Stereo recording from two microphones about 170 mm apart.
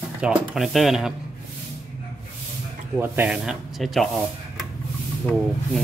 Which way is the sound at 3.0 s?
10° right (ahead or behind).